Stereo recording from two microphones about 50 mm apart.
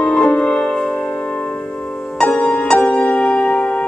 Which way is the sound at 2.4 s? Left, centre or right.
Left.